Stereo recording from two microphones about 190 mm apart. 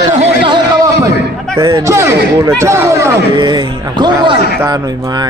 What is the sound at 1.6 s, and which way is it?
Speech, 15° right (ahead or behind).